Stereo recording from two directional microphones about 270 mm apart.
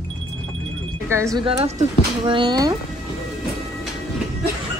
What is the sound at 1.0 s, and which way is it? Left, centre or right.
Speech, centre.